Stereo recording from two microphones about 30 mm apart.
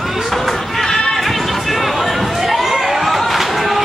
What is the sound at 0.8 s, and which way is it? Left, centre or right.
Music, centre.